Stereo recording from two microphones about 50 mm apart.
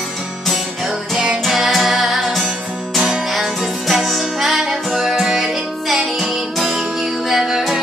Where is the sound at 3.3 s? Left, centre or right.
Centre.